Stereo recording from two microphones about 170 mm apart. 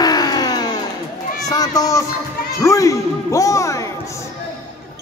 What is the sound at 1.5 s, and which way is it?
A child's voice, 20° left (ahead or behind).